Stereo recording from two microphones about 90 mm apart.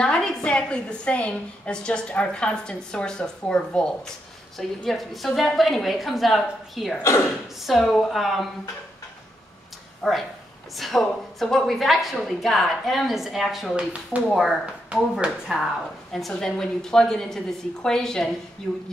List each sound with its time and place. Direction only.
0.0 s a woman's voice: 10° left (ahead or behind)
10.0 s a woman's voice: centre (ahead or behind)
14.9 s a woman's voice: 10° right (ahead or behind); by 18.3 s 5° left (ahead or behind)